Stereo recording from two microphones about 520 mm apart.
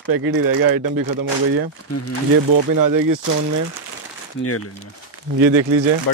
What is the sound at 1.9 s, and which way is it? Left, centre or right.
Speech, left.